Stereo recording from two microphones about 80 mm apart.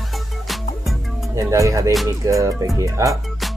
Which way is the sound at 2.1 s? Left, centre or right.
Right.